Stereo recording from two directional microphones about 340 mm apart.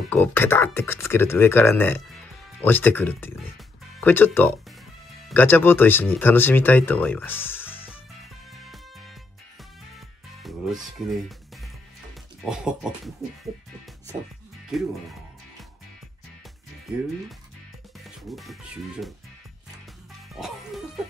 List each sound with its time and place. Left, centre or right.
0.1 s speech: centre
9.9 s music: centre
12.4 s speech: centre
14.7 s speech: centre
18.0 s speech: centre
20.3 s music: centre